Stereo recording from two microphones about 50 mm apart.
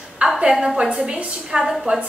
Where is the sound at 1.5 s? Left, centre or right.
Centre.